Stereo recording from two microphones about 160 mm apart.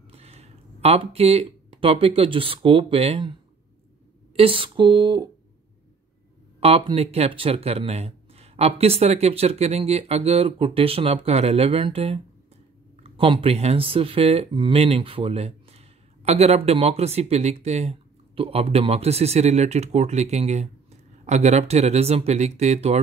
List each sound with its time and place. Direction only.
0.1 s speech: 40° right (ahead or behind)
4.4 s speech: 35° right (ahead or behind)
6.6 s speech: 40° right (ahead or behind)